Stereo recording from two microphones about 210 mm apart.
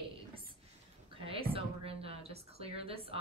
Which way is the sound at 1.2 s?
25° right (ahead or behind).